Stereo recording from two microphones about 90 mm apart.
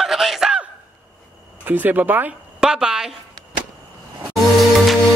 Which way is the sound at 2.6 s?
10° right (ahead or behind).